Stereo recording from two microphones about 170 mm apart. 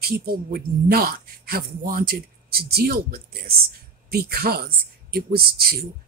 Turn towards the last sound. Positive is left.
turn(degrees=-60)  # may be behind; listen again after turning